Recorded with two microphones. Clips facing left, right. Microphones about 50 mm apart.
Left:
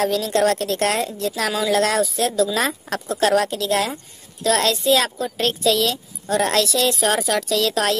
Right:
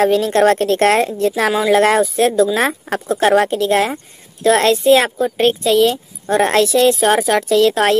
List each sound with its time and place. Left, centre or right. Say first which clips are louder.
0.0 s a woman's voice: right 6 dB; right